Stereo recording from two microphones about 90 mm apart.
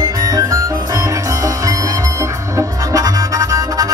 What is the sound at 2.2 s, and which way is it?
Music, 40° right (ahead or behind).